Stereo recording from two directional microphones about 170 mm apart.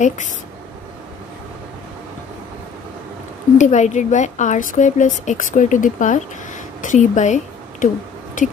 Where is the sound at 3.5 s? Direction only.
45° left (ahead or behind).